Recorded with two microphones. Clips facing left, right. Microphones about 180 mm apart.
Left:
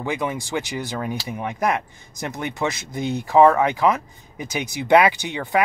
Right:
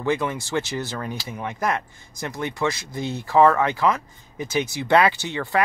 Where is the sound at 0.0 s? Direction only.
15° left (ahead or behind).